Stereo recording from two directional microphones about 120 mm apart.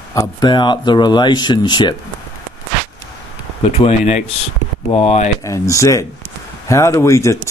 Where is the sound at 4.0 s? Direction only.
65° left (ahead or behind).